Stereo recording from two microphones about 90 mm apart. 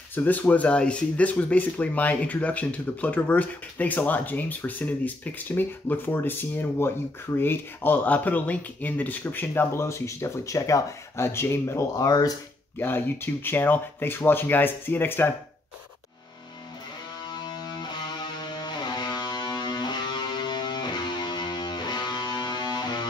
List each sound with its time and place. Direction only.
0.1 s speech: 20° left (ahead or behind)
12.1 s speech: 45° left (ahead or behind)
12.7 s speech: 25° left (ahead or behind)
17.3 s music: 50° left (ahead or behind)